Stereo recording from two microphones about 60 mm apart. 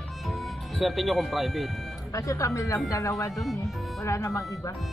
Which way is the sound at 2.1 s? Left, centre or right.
Left.